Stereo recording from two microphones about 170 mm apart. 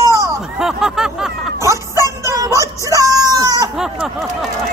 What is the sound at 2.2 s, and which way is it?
Music, 20° right (ahead or behind).